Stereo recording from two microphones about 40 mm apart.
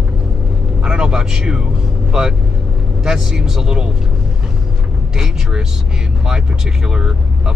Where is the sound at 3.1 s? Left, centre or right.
Centre.